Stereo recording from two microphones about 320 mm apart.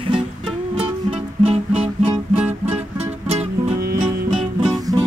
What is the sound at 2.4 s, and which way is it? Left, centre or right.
Music, centre.